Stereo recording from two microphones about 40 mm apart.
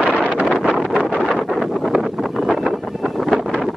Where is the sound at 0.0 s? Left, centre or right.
Left.